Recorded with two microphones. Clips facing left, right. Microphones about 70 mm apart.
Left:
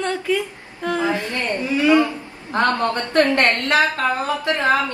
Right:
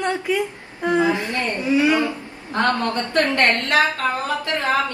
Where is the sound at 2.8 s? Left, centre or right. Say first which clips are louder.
Left 3 dB; left.